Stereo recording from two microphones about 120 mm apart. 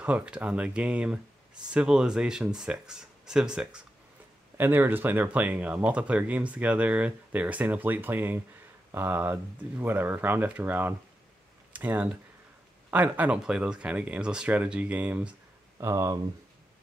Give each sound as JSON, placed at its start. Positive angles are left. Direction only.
{"t": 0.0, "sound": "speech", "side_deg": -10}
{"t": 4.6, "sound": "speech", "side_deg": -15}
{"t": 15.8, "sound": "speech", "side_deg": -25}